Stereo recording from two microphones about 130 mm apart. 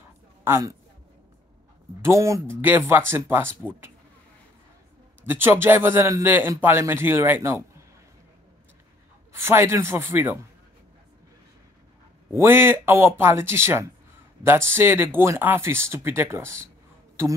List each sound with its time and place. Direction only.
0.4 s speech: 20° right (ahead or behind)
2.0 s speech: 20° right (ahead or behind)
5.2 s a man's voice: 15° right (ahead or behind)
9.3 s speech: 20° right (ahead or behind)
12.3 s a man's voice: 20° right (ahead or behind)